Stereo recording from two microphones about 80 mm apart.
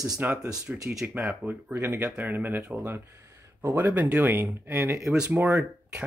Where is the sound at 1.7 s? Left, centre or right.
Right.